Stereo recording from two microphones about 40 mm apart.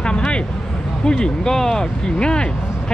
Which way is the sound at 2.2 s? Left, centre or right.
Left.